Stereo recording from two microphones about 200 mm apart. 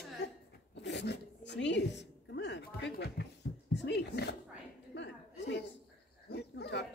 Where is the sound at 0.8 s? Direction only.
60° left (ahead or behind).